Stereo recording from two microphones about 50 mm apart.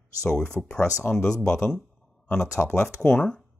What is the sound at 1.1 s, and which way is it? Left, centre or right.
Speech, left.